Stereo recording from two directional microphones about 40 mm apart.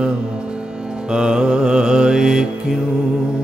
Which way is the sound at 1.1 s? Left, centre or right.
Centre.